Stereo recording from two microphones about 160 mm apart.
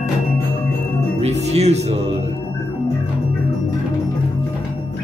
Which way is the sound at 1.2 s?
40° right (ahead or behind).